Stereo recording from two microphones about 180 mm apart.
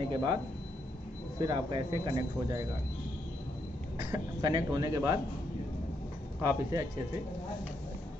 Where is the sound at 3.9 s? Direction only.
25° right (ahead or behind).